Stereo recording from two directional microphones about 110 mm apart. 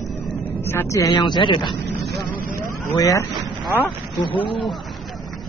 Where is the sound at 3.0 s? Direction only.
30° left (ahead or behind).